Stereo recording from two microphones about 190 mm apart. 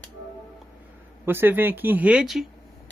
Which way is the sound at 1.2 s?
10° right (ahead or behind).